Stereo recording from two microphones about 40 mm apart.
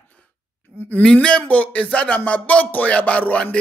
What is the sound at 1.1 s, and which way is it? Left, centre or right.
A man's voice, left.